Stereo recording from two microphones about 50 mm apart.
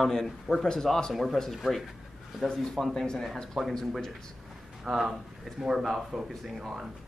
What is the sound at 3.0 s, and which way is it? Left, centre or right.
Speech, centre.